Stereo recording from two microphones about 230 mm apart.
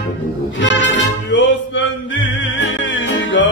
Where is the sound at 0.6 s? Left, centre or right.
Left.